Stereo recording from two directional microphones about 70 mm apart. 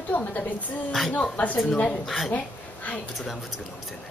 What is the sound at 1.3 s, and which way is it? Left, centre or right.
A woman's voice, left.